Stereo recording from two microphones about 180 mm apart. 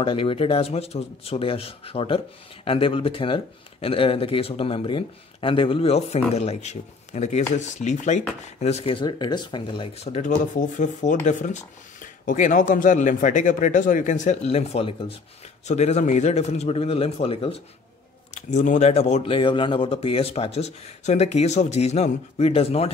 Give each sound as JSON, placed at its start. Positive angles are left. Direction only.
{"t": 0.0, "sound": "speech", "side_deg": 30}